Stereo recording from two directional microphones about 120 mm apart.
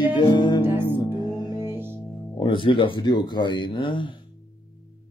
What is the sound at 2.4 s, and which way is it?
Speech, 45° left (ahead or behind).